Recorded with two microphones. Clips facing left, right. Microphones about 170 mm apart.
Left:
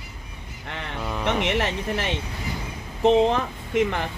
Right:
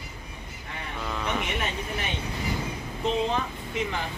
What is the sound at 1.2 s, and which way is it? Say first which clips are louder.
Speech: left 8 dB; 75° left (ahead or behind).